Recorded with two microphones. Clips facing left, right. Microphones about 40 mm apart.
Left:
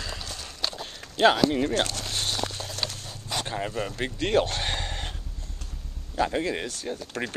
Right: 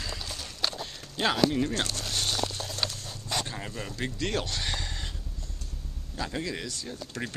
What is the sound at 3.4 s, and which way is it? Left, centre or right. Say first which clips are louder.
Speech: left 7 dB; left.